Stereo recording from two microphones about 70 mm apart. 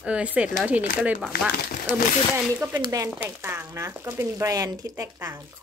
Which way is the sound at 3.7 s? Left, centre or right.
Right.